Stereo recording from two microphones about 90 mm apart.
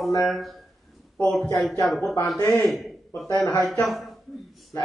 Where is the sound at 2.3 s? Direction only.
40° left (ahead or behind).